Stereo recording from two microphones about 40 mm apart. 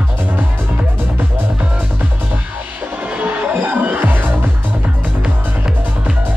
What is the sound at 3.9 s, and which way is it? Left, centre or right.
Music, right.